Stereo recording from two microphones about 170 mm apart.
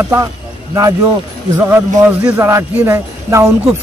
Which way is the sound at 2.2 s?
15° right (ahead or behind).